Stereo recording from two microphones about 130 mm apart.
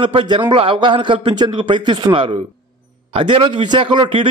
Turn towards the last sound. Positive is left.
turn(degrees=-40)  # may be behind; listen again after turning